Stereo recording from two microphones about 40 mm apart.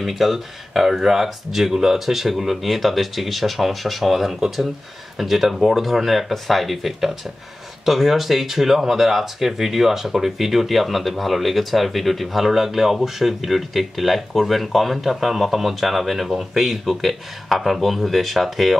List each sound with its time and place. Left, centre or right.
0.0 s speech: centre
16.3 s speech: centre
16.6 s speech: centre